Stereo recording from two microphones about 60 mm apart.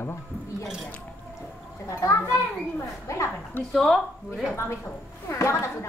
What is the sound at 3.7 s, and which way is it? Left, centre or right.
Speech, centre.